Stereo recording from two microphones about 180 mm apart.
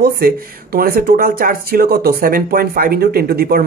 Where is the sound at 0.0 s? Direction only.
55° right (ahead or behind).